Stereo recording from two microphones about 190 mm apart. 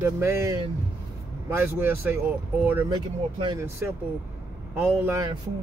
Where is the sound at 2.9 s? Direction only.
25° right (ahead or behind).